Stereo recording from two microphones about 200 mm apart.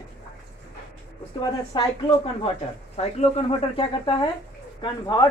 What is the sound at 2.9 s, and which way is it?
Speech, 30° left (ahead or behind).